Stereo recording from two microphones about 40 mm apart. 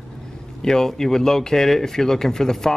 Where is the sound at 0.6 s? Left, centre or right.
Centre.